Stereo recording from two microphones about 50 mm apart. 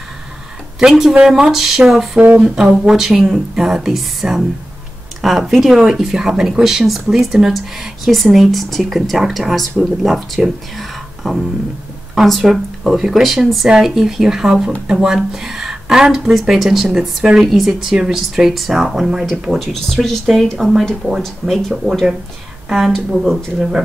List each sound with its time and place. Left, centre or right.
0.7 s speech: centre
19.7 s speech: centre
20.5 s speech: centre
21.2 s speech: centre